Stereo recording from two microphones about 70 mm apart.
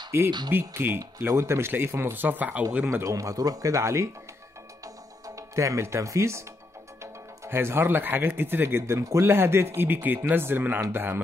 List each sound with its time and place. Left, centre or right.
0.1 s speech: right
0.9 s speech: right
2.9 s speech: right
4.8 s music: right
7.0 s speech: right